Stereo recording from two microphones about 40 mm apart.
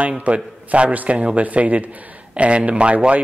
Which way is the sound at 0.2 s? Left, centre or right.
Right.